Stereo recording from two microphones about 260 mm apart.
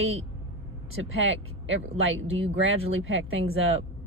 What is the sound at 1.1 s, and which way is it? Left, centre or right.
Speech, right.